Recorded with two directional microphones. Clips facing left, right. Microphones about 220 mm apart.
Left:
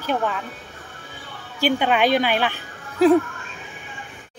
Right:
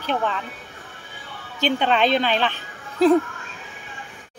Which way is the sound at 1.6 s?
10° left (ahead or behind).